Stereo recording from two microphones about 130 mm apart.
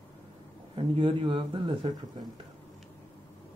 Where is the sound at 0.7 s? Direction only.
40° right (ahead or behind).